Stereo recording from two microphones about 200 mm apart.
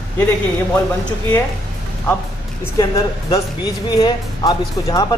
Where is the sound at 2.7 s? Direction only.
20° left (ahead or behind).